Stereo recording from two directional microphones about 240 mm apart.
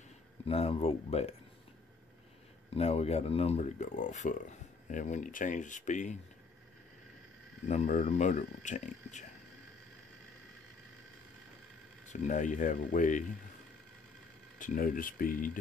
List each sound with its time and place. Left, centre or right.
0.5 s speech: left
2.7 s speech: left
7.6 s speech: left
12.1 s speech: left
14.6 s speech: left